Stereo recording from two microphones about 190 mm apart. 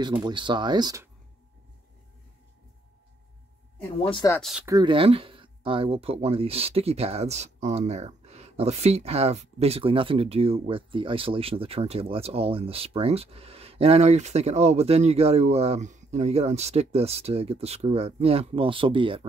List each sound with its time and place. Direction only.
0.0 s speech: 25° right (ahead or behind)
4.0 s speech: 25° left (ahead or behind)
4.4 s speech: centre (ahead or behind)
4.6 s speech: 20° right (ahead or behind)